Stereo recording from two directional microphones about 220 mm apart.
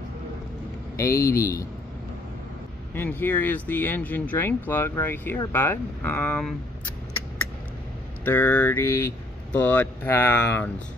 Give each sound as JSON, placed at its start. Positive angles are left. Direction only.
{"t": 1.1, "sound": "speech", "side_deg": 40}
{"t": 1.4, "sound": "speech", "side_deg": 15}
{"t": 2.9, "sound": "speech", "side_deg": 10}
{"t": 8.3, "sound": "speech", "side_deg": 10}